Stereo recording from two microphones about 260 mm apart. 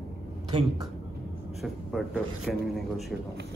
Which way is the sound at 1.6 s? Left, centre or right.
Centre.